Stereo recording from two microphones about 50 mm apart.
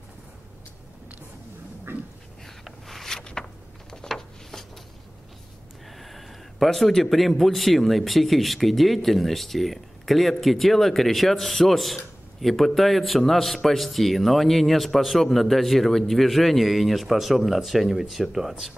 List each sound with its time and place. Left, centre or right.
1.9 s dog: right
2.4 s a sound: centre
5.9 s a man's voice: centre